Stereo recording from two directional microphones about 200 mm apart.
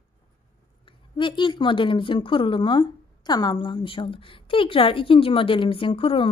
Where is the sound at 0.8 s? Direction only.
25° left (ahead or behind).